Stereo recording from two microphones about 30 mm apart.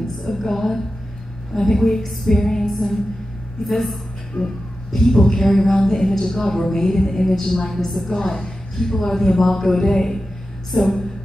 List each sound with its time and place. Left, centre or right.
0.3 s a woman's voice: centre
3.6 s a woman's voice: centre
4.4 s speech: left
4.9 s a woman's voice: centre
10.7 s a woman's voice: centre